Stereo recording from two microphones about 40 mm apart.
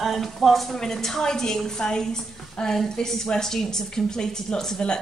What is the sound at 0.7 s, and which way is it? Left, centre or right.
A woman's voice, centre.